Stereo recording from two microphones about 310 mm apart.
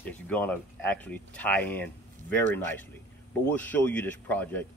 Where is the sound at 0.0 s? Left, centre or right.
Centre.